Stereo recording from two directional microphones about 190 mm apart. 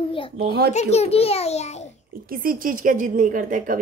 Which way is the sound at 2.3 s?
50° right (ahead or behind).